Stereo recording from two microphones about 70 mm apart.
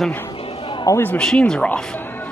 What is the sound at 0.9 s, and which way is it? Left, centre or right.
Speech, left.